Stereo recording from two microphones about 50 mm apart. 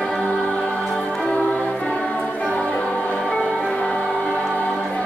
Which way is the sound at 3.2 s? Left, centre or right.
Left.